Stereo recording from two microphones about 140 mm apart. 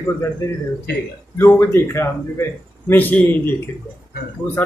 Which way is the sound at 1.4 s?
15° left (ahead or behind).